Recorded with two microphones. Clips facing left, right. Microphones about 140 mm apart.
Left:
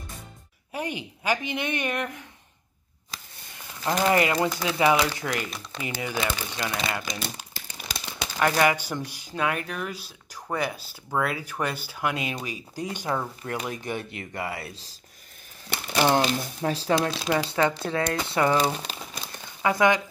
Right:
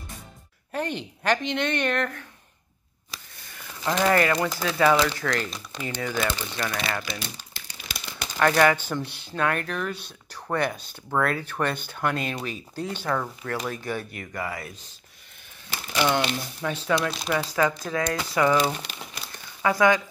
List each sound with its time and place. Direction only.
0.7 s speech: 10° left (ahead or behind)
3.8 s speech: 15° left (ahead or behind)
7.1 s crumpling: 40° left (ahead or behind)
8.4 s speech: 15° left (ahead or behind); by 14.8 s 30° left (ahead or behind)
15.9 s speech: 40° left (ahead or behind)
19.2 s a sound: 20° left (ahead or behind)